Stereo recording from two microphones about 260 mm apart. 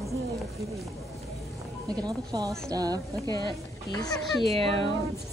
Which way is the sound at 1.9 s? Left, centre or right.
Centre.